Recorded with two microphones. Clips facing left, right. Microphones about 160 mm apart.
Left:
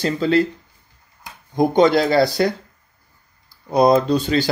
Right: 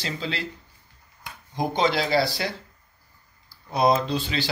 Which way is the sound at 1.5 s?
50° left (ahead or behind).